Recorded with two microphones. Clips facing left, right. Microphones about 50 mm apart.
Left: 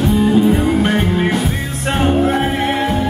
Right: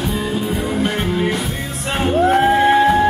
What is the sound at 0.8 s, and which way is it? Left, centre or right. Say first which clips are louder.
Music: left 3 dB; left.